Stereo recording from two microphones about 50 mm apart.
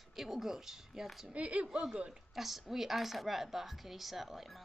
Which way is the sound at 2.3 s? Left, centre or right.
Centre.